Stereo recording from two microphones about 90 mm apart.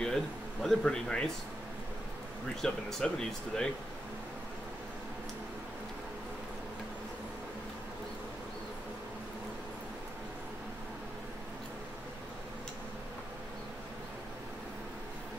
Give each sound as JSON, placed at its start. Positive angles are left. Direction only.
{"t": 0.0, "sound": "speech", "side_deg": 5}
{"t": 2.5, "sound": "speech", "side_deg": 5}